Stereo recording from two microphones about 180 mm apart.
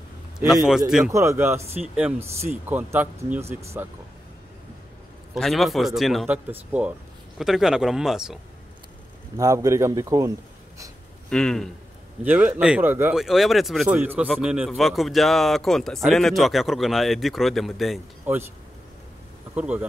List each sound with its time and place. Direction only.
0.4 s speech: centre (ahead or behind)
1.1 s speech: 15° right (ahead or behind)
5.3 s speech: centre (ahead or behind)
9.4 s speech: 20° right (ahead or behind)
11.2 s speech: 5° left (ahead or behind)
12.2 s speech: 10° right (ahead or behind)
13.2 s speech: centre (ahead or behind)
19.5 s speech: 5° right (ahead or behind)